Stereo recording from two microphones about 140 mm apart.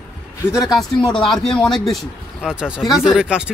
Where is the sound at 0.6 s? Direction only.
30° left (ahead or behind).